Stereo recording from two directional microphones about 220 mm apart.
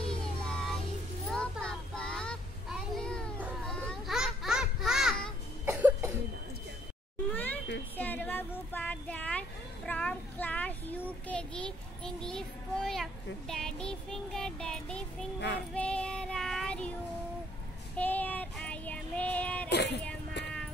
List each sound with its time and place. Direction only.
0.1 s music: 5° left (ahead or behind)
1.3 s child singing: 5° left (ahead or behind)
5.7 s cough: 10° right (ahead or behind)
7.3 s a sound: 10° left (ahead or behind)
15.7 s child singing: 5° left (ahead or behind)
17.9 s child singing: 5° left (ahead or behind)
19.7 s music: 50° left (ahead or behind)